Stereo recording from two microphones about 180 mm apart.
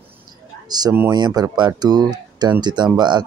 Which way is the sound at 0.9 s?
10° right (ahead or behind).